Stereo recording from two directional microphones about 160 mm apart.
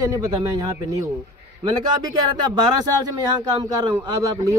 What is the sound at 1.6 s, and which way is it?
Speech, 25° right (ahead or behind).